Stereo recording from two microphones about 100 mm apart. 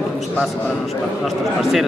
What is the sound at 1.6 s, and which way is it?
Speech, 5° right (ahead or behind).